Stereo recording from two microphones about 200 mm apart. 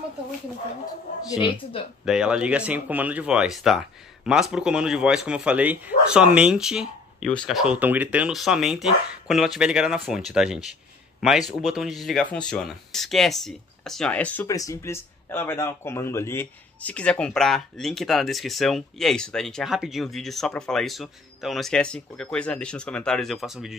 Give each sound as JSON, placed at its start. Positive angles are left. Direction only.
{"t": 1.2, "sound": "speech", "side_deg": 20}
{"t": 2.0, "sound": "speech", "side_deg": -5}